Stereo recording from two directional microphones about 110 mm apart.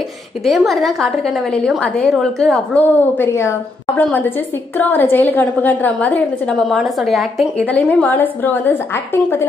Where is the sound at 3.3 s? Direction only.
25° left (ahead or behind); by 7.6 s centre (ahead or behind).